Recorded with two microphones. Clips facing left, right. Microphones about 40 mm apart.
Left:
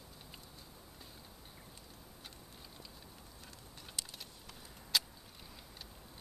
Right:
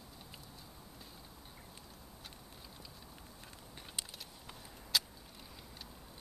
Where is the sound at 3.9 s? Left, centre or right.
Right.